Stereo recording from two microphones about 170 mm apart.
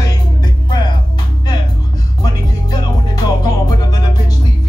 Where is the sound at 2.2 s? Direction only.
25° left (ahead or behind).